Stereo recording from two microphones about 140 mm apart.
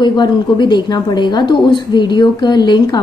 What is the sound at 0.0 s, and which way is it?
A woman's voice, 35° left (ahead or behind).